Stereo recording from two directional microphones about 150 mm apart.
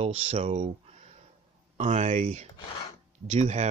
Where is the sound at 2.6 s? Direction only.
35° left (ahead or behind).